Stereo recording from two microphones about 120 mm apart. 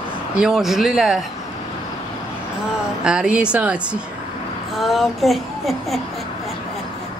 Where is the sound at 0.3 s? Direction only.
5° right (ahead or behind).